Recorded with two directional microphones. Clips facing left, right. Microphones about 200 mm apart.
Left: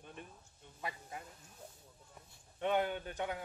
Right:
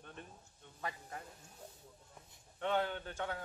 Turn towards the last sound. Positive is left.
turn(degrees=15)  # may be behind; listen again after turning